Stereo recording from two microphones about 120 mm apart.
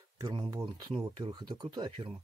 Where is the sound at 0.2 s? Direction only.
40° right (ahead or behind).